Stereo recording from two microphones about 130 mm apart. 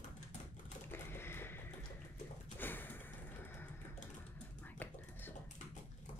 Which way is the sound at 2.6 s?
15° left (ahead or behind).